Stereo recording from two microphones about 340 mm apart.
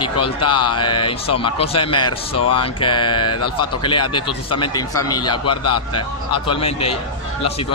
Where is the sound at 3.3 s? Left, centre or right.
Left.